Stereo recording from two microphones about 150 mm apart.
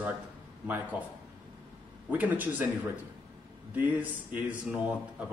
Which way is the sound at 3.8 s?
10° right (ahead or behind).